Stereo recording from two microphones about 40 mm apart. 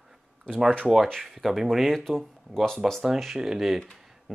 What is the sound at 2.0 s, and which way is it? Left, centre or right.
Speech, centre.